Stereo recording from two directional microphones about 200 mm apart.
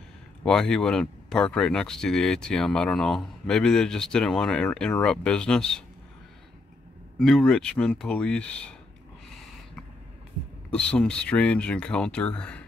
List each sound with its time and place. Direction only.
0.5 s speech: 5° left (ahead or behind)
7.2 s speech: centre (ahead or behind)
10.7 s speech: 5° left (ahead or behind)